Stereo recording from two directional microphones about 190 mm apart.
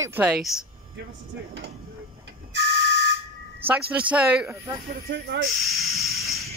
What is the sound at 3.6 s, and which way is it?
Speech, 5° right (ahead or behind).